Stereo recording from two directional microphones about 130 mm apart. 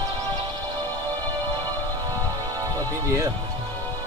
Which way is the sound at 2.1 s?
30° right (ahead or behind).